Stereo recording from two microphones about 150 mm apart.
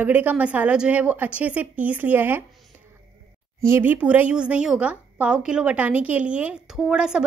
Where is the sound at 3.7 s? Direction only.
15° right (ahead or behind).